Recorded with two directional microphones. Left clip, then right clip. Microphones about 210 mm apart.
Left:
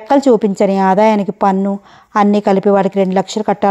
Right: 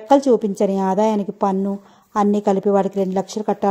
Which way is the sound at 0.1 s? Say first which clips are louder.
Left 4 dB; 15° left (ahead or behind).